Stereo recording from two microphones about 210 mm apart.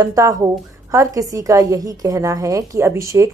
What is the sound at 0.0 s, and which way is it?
A woman's voice, 15° right (ahead or behind).